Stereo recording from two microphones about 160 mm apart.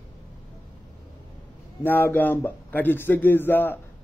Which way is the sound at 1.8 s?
10° left (ahead or behind).